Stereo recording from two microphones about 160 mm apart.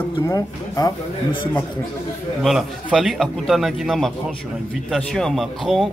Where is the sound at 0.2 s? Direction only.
20° left (ahead or behind).